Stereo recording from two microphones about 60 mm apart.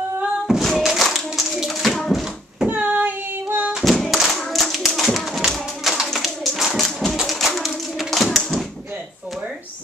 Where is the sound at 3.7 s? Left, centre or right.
Centre.